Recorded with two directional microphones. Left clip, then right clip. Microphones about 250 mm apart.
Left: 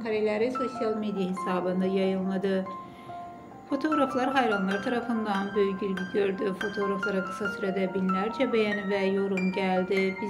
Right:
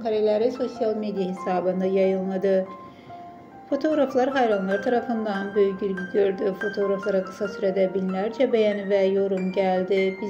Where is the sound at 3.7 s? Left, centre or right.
Centre.